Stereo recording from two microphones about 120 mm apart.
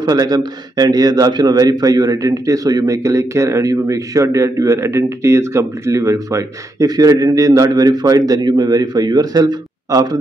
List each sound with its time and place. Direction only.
0.0 s a man's voice: 35° right (ahead or behind)